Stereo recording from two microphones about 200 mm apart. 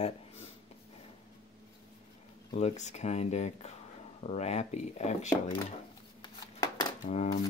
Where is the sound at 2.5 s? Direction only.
35° left (ahead or behind).